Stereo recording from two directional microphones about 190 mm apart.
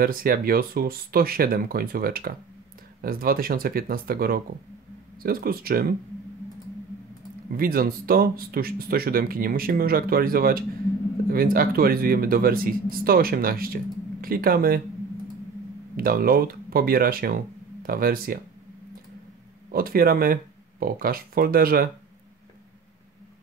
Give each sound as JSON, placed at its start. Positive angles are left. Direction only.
{"t": 0.0, "sound": "speech", "side_deg": -50}
{"t": 7.5, "sound": "speech", "side_deg": -50}
{"t": 16.0, "sound": "speech", "side_deg": -50}
{"t": 19.7, "sound": "speech", "side_deg": -50}